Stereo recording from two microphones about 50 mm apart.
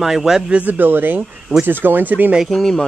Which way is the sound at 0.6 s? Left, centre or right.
Right.